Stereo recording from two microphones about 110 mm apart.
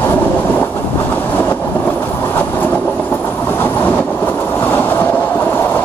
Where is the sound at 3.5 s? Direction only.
15° left (ahead or behind).